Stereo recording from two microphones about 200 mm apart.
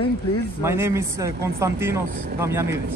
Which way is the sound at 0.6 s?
10° right (ahead or behind).